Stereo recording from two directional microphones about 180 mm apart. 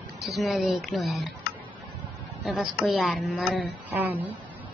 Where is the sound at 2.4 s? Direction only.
5° right (ahead or behind).